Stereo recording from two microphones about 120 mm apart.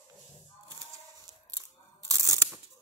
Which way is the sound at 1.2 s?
30° right (ahead or behind).